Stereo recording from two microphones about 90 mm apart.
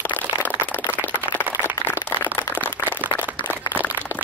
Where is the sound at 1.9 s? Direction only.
20° left (ahead or behind).